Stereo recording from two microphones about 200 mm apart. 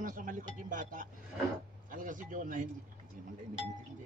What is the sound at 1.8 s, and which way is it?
Speech, 40° right (ahead or behind).